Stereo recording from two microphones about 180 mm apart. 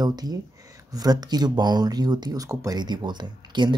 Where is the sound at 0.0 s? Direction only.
20° right (ahead or behind).